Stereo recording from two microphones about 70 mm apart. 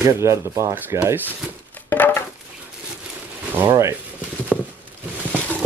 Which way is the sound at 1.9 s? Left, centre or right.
Left.